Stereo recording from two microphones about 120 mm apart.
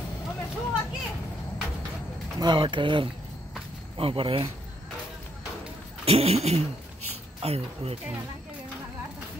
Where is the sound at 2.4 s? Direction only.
40° right (ahead or behind).